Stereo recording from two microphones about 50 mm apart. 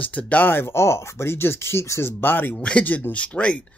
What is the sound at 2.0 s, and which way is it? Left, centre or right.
Speech, left.